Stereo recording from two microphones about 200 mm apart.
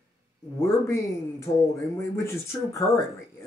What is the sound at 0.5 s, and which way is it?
Speech, 15° left (ahead or behind).